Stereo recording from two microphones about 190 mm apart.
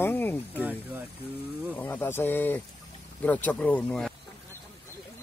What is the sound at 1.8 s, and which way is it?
Speech, 10° left (ahead or behind).